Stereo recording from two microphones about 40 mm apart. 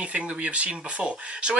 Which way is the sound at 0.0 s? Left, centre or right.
Right.